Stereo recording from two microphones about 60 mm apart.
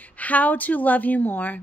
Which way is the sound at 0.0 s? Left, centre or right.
Left.